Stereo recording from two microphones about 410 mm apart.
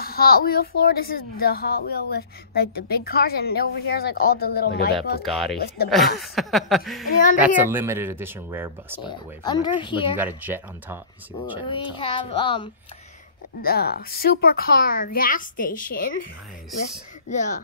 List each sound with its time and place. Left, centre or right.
0.0 s a woman's voice: left
5.2 s speech: centre
9.0 s speech: centre
10.1 s speech: centre
11.6 s speech: centre
13.6 s a woman's voice: left
17.3 s speech: centre